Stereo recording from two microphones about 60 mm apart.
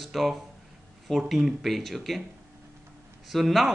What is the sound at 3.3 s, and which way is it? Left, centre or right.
Speech, centre.